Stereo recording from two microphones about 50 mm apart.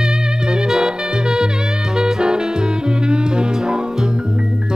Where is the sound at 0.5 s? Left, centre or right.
Centre.